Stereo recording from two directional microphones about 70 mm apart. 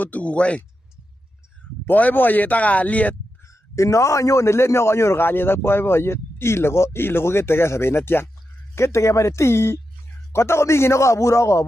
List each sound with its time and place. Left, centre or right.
0.0 s speech: left
1.9 s speech: left
3.7 s a man's voice: left